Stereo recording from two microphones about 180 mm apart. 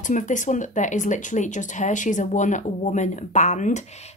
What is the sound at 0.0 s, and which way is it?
Speech, 45° left (ahead or behind).